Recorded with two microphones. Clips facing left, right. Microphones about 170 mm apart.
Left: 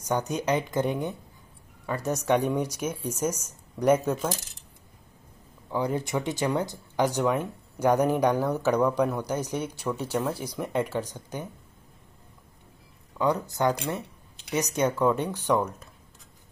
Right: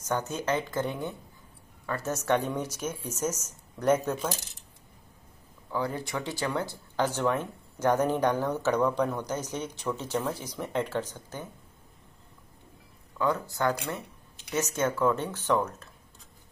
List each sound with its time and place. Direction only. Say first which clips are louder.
0.0 s speech: left 3 dB; 15° left (ahead or behind)
5.7 s speech: left 4 dB; 20° left (ahead or behind)
13.2 s speech: left 3 dB; 20° left (ahead or behind)